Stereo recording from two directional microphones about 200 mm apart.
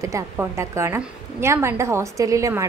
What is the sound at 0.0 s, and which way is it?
A woman's voice, 15° right (ahead or behind).